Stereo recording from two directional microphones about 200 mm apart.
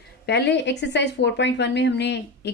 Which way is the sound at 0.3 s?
60° left (ahead or behind).